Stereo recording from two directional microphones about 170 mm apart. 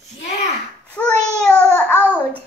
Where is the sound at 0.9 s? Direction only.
5° left (ahead or behind).